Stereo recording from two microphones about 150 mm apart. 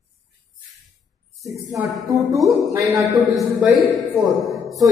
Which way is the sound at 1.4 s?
20° right (ahead or behind).